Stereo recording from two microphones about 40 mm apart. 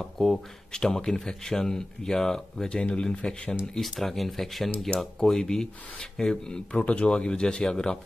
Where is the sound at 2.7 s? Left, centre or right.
Left.